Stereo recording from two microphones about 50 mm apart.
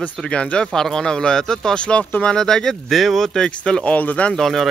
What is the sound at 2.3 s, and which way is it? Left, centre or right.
Speech, centre.